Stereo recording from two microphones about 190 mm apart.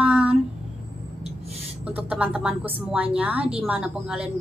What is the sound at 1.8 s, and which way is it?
A woman's voice, 5° right (ahead or behind).